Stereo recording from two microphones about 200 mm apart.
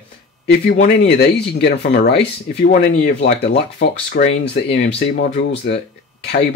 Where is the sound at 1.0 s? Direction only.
55° left (ahead or behind).